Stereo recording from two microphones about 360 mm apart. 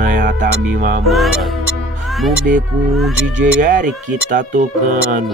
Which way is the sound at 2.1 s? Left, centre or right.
Centre.